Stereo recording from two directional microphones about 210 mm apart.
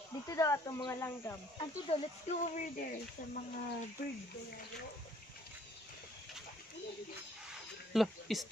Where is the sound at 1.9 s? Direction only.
35° left (ahead or behind).